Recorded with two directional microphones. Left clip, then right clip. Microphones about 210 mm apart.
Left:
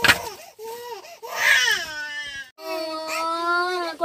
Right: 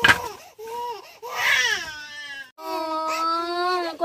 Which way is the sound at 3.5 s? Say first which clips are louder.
Even; 20° right (ahead or behind).